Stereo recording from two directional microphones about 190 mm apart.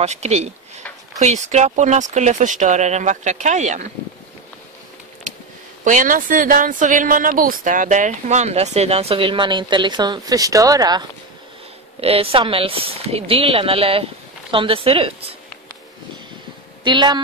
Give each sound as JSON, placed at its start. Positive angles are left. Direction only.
{"t": 0.0, "sound": "a woman's voice", "side_deg": -35}
{"t": 5.9, "sound": "a woman's voice", "side_deg": -45}
{"t": 12.0, "sound": "speech", "side_deg": -30}
{"t": 16.8, "sound": "speech", "side_deg": -25}